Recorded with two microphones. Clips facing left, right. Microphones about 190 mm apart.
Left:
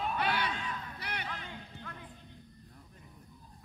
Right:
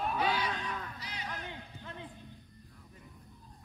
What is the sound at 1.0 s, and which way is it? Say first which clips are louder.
Music: left 3 dB; 65° left (ahead or behind).